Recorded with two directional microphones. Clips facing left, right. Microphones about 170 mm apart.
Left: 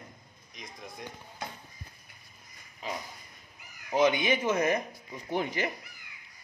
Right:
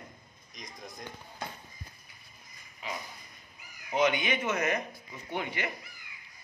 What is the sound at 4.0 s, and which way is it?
Speech, 30° left (ahead or behind).